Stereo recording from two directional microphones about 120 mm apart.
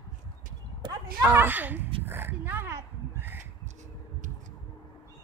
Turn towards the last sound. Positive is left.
turn(degrees=-15)  # may be behind; listen again after turning